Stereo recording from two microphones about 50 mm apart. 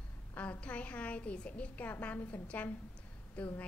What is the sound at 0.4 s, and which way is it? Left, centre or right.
A woman's voice, left.